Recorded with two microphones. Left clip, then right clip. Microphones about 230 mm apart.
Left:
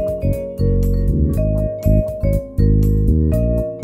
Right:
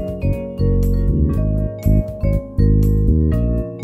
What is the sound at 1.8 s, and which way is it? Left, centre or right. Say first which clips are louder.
Music: left 4 dB; centre.